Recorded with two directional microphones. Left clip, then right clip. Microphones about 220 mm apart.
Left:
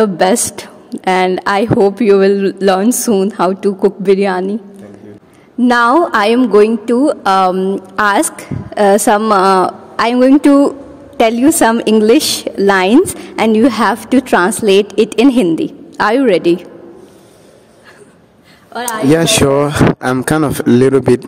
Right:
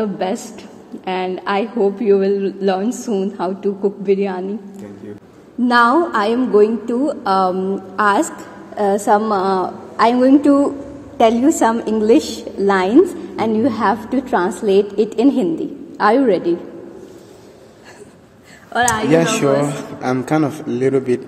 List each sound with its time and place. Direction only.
0.0 s a woman's voice: 55° left (ahead or behind)
5.6 s a woman's voice: 45° left (ahead or behind)
18.7 s speech: 10° right (ahead or behind)
19.0 s a woman's voice: 50° left (ahead or behind)